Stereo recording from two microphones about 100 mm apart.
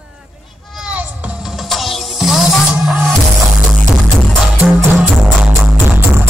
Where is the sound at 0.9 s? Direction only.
15° right (ahead or behind); by 3.1 s 5° left (ahead or behind).